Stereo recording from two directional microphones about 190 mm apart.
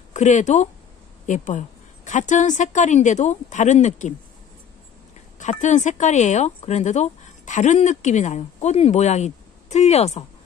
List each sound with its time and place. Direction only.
0.1 s speech: 40° left (ahead or behind)
5.4 s speech: 40° left (ahead or behind)